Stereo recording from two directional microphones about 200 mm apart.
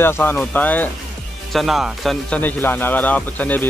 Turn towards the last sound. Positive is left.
turn(degrees=10)  # may be behind; listen again after turning